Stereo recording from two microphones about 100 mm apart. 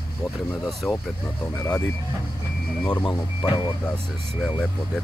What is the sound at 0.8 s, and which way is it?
Speech, 5° left (ahead or behind).